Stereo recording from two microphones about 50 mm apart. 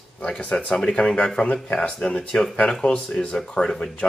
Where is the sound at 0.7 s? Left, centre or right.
Centre.